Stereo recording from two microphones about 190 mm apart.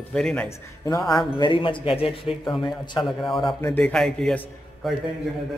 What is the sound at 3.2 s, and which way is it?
A man's voice, centre (ahead or behind).